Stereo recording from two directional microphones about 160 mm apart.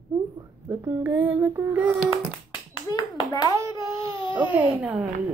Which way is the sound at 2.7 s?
30° left (ahead or behind).